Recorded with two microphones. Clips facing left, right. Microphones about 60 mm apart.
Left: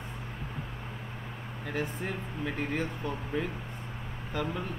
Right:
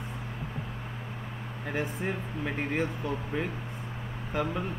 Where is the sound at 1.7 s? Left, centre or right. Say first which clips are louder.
Right 2 dB; centre.